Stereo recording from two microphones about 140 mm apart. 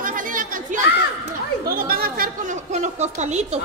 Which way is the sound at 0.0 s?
75° right (ahead or behind).